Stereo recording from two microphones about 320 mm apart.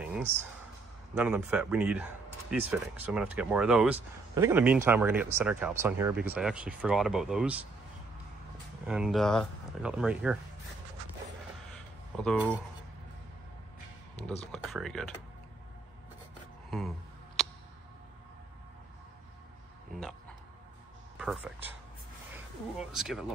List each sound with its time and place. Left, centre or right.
0.0 s a sound: centre
1.1 s speech: centre
8.8 s speech: centre
12.2 s speech: centre
14.5 s speech: centre
21.2 s speech: centre
22.8 s speech: centre